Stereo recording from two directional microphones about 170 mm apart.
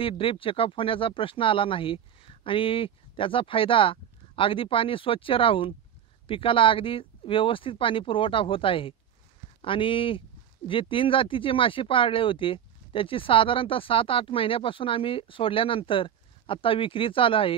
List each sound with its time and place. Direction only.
0.0 s speech: 30° left (ahead or behind)